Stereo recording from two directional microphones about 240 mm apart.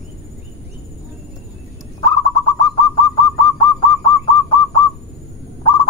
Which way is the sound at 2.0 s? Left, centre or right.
Centre.